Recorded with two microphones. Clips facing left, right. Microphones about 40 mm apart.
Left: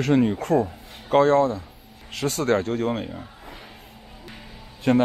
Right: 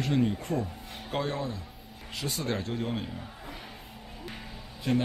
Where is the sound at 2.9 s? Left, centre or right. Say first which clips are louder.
Left 6 dB; left.